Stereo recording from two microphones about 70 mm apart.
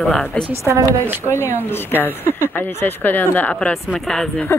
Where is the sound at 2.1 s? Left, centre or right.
Right.